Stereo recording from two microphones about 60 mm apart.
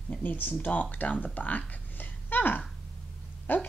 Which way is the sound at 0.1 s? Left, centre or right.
Left.